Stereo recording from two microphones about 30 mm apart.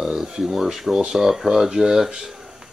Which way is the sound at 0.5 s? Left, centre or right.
Centre.